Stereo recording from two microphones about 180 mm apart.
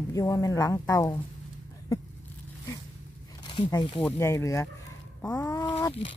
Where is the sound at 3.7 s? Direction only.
25° left (ahead or behind).